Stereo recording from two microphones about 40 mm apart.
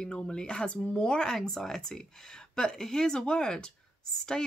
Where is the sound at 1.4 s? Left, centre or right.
Centre.